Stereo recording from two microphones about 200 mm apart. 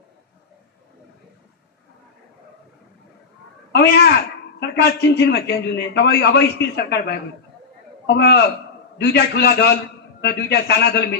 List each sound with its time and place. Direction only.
3.7 s a man's voice: 55° left (ahead or behind)